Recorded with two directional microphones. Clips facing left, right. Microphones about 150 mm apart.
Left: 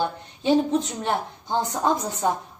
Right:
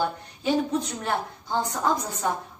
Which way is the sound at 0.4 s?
25° left (ahead or behind).